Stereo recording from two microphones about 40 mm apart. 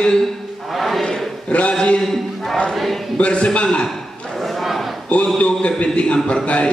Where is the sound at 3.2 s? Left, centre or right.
Left.